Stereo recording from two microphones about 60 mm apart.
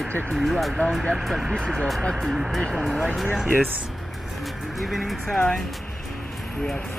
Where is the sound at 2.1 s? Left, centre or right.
Centre.